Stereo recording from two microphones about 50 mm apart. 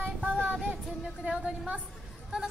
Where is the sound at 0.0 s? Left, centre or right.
Right.